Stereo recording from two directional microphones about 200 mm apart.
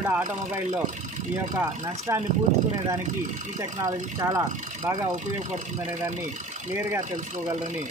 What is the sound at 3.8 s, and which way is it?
Speech, 15° right (ahead or behind).